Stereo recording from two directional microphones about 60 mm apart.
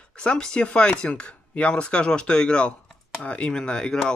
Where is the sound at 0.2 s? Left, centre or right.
Centre.